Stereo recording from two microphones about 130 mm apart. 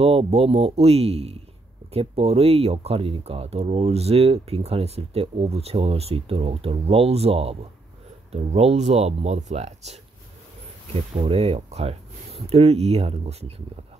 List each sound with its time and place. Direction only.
0.0 s speech: 50° right (ahead or behind)
11.1 s speech: 50° right (ahead or behind)